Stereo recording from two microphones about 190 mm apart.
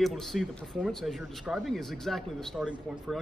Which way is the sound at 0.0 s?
Centre (ahead or behind).